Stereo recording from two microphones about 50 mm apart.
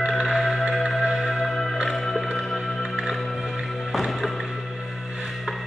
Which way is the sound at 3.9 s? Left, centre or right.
Centre.